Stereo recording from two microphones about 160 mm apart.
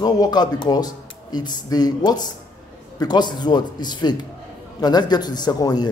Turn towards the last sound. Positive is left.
turn(degrees=25)  # may be behind; listen again after turning